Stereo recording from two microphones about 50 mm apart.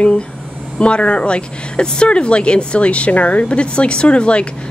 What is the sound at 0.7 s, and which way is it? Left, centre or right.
A woman's voice, left.